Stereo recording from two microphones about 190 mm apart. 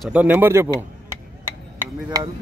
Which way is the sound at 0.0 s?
5° right (ahead or behind).